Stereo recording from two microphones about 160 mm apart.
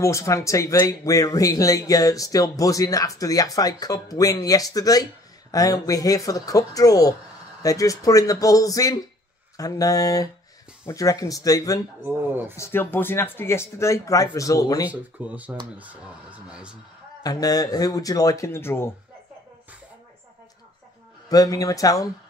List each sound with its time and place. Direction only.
0.0 s speech: 20° left (ahead or behind)
12.0 s speech: 10° right (ahead or behind)
12.5 s speech: 15° left (ahead or behind)
14.9 s speech: 10° right (ahead or behind)
17.2 s speech: 25° left (ahead or behind)
21.3 s speech: 20° left (ahead or behind)